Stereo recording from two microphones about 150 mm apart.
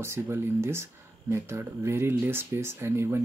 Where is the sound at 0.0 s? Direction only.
15° right (ahead or behind).